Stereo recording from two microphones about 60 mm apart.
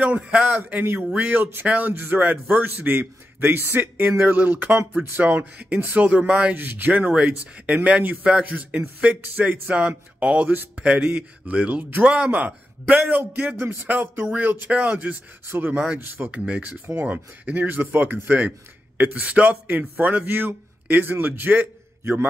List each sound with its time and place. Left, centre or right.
0.0 s a man's voice: right
6.5 s speech: right
15.5 s a man's voice: right
16.3 s a man's voice: centre